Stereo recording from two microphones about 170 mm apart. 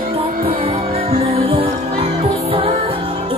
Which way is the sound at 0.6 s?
35° right (ahead or behind).